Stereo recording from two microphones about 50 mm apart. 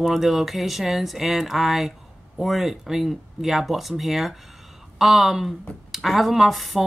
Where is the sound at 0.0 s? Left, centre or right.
Centre.